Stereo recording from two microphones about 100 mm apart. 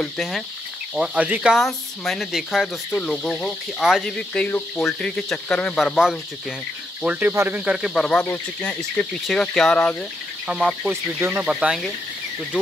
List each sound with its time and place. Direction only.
0.9 s speech: 5° right (ahead or behind)
1.2 s cricket: 10° right (ahead or behind)
1.6 s speech: centre (ahead or behind)
2.9 s cricket: 5° left (ahead or behind)
5.8 s speech: centre (ahead or behind)
7.0 s cricket: 15° right (ahead or behind)
7.7 s speech: centre (ahead or behind)
8.3 s cricket: 15° left (ahead or behind)
10.4 s speech: 5° right (ahead or behind)
11.1 s speech: 20° right (ahead or behind)
11.4 s cricket: 5° right (ahead or behind)